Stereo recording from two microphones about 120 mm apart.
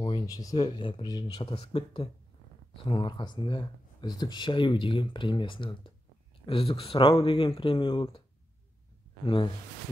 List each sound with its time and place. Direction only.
0.3 s speech: 30° left (ahead or behind)
0.7 s speech: 45° left (ahead or behind)
9.2 s speech: 45° left (ahead or behind)